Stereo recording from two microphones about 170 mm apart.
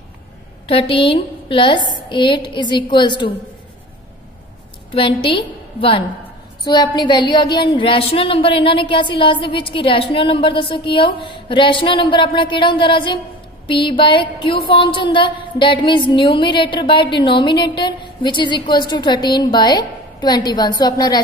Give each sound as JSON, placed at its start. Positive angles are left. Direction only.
{"t": 0.7, "sound": "a woman's voice", "side_deg": 35}
{"t": 4.9, "sound": "a woman's voice", "side_deg": 30}